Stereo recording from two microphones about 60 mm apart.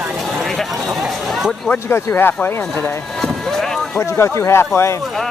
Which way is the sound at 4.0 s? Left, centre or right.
Left.